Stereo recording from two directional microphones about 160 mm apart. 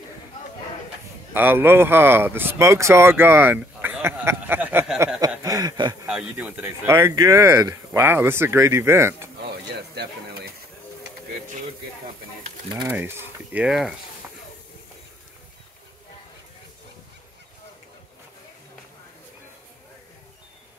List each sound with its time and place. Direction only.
1.3 s speech: 15° right (ahead or behind)
5.4 s a sound: 20° right (ahead or behind)
6.0 s speech: 5° right (ahead or behind)
9.5 s bird: 85° right
12.8 s speech: 15° right (ahead or behind)